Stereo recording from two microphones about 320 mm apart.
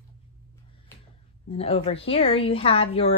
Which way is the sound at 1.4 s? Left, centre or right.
Centre.